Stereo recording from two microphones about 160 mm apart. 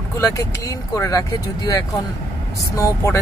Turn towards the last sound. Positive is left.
turn(degrees=20)  # may be behind; listen again after turning